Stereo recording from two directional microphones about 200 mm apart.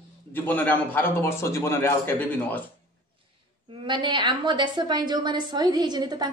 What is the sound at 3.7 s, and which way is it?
A woman's voice, 25° right (ahead or behind).